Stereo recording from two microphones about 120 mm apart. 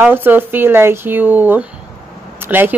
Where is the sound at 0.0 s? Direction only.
15° right (ahead or behind).